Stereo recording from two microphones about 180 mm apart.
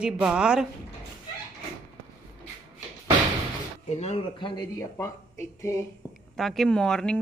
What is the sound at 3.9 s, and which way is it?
Speech, 35° left (ahead or behind).